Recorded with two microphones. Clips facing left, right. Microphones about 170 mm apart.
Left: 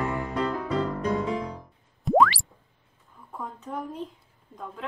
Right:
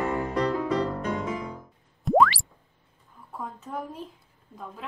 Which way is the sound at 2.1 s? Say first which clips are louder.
Even; centre (ahead or behind).